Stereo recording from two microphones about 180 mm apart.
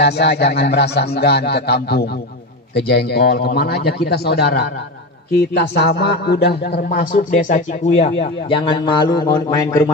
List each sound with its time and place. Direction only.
0.0 s speech: 70° left (ahead or behind); by 9.8 s 20° left (ahead or behind)